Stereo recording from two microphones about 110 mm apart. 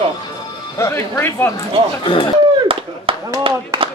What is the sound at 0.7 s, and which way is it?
Speech, 25° left (ahead or behind).